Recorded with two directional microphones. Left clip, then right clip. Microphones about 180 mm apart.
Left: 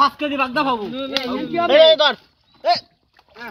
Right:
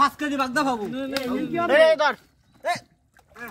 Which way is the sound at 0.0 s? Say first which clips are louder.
Left 4 dB; 90° right.